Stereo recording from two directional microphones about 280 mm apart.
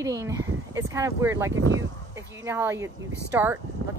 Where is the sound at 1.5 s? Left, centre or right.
Right.